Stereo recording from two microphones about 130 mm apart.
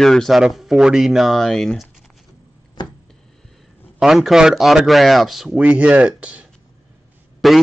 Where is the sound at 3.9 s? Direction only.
Centre (ahead or behind).